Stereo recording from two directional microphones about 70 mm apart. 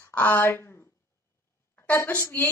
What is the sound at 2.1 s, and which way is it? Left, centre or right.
Speech, left.